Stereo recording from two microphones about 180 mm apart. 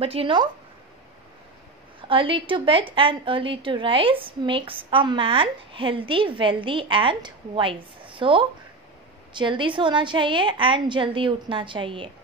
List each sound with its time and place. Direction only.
0.0 s speech: 30° right (ahead or behind)
2.0 s a woman's voice: 30° right (ahead or behind)